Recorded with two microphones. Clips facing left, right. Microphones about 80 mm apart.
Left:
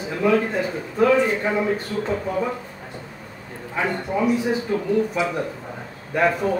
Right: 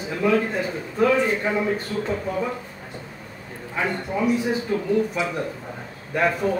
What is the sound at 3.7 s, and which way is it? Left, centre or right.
Speech, centre.